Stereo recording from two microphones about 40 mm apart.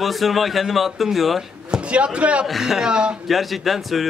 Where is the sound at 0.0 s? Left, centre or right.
Centre.